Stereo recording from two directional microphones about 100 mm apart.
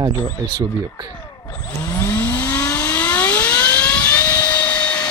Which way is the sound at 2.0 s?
20° left (ahead or behind).